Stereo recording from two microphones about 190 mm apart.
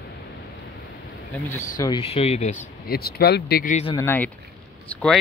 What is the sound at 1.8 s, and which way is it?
Speech, 25° left (ahead or behind).